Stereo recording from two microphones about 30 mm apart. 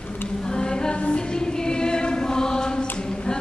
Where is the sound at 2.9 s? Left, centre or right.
Left.